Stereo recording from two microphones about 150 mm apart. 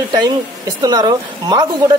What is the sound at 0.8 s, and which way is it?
Speech, 30° right (ahead or behind).